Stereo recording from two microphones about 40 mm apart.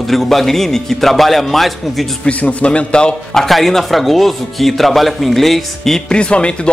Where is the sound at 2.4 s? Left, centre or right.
Left.